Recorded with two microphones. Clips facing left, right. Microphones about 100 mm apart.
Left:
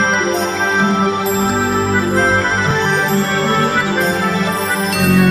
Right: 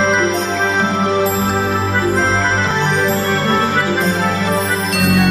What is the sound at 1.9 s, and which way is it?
Music, centre (ahead or behind).